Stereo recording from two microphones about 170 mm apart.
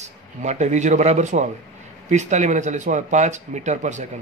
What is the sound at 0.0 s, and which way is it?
A man's voice, 40° right (ahead or behind).